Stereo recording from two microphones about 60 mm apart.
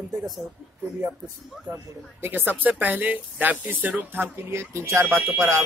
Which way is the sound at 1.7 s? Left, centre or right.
Right.